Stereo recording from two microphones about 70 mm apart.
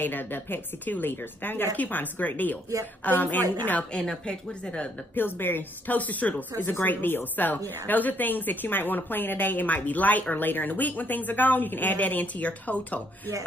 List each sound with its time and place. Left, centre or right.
0.0 s a woman's voice: left
3.9 s speech: centre
5.1 s a woman's voice: left